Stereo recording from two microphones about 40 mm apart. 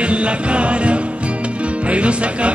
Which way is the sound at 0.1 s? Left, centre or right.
Right.